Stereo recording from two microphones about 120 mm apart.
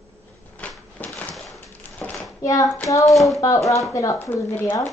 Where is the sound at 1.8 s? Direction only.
15° left (ahead or behind).